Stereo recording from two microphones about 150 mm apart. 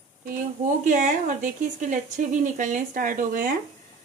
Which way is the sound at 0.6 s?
55° right (ahead or behind).